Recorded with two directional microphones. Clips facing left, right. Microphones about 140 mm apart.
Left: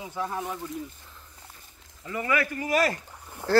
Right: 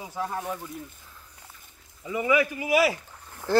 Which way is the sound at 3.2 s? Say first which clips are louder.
Left 3 dB; 15° left (ahead or behind).